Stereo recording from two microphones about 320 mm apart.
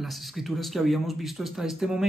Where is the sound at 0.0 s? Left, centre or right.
Centre.